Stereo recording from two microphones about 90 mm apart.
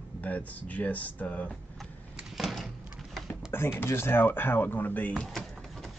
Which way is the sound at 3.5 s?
25° left (ahead or behind).